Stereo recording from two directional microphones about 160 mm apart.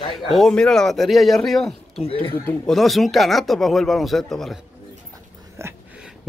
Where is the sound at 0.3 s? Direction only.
5° left (ahead or behind).